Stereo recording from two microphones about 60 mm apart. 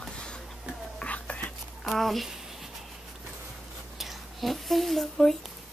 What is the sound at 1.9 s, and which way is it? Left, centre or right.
Speech, centre.